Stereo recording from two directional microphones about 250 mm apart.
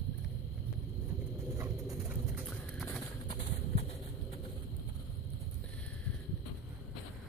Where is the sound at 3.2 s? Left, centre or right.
Left.